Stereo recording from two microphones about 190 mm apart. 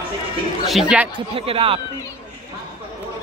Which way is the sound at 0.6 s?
5° right (ahead or behind).